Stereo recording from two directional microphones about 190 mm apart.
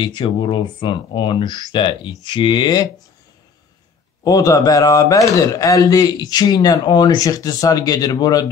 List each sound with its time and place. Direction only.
0.0 s speech: 25° left (ahead or behind)
4.2 s speech: 20° left (ahead or behind)